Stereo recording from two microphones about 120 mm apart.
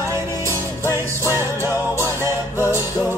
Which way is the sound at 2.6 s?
25° left (ahead or behind).